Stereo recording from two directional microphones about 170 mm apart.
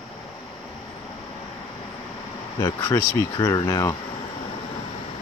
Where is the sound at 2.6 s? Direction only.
20° left (ahead or behind).